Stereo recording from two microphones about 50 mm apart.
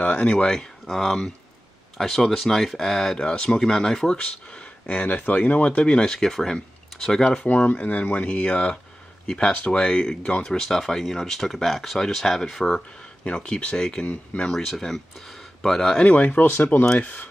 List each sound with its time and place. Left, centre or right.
0.0 s speech: left
0.3 s speech: centre
4.8 s speech: left
5.9 s speech: centre
7.4 s speech: left; by 10.3 s centre
10.4 s speech: centre
12.7 s speech: left
14.5 s speech: centre
16.0 s speech: left
16.3 s speech: left